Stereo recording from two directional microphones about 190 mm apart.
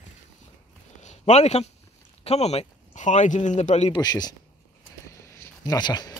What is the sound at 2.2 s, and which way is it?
Speech, 35° left (ahead or behind).